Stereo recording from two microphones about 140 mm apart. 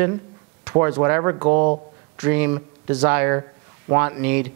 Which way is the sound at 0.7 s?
20° right (ahead or behind).